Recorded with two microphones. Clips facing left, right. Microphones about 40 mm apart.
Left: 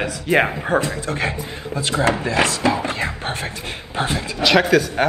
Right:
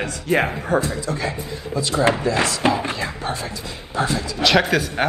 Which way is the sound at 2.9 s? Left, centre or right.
Left.